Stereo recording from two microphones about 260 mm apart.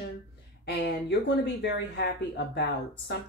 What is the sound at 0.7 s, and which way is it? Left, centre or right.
Speech, left.